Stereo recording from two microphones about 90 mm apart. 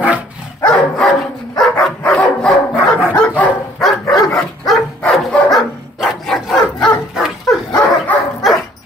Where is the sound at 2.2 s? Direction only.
10° left (ahead or behind).